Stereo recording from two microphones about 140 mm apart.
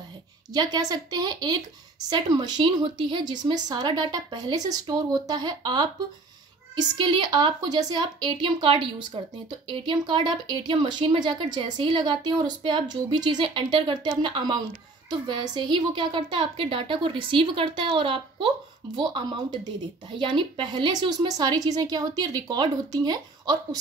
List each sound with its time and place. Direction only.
0.5 s speech: 30° right (ahead or behind)